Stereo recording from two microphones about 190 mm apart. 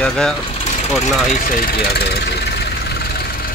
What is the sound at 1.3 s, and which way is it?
Speech, 55° left (ahead or behind).